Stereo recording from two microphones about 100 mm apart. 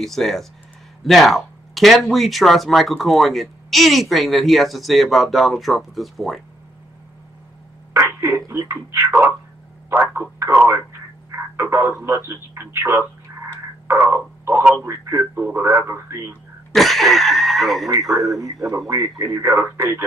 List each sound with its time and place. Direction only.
0.0 s speech: centre (ahead or behind)
7.9 s a sound: 25° right (ahead or behind)
8.5 s speech: 25° right (ahead or behind)
13.8 s a sound: 25° right (ahead or behind)
14.9 s speech: 25° right (ahead or behind)
16.7 s speech: centre (ahead or behind)
18.4 s speech: 30° right (ahead or behind)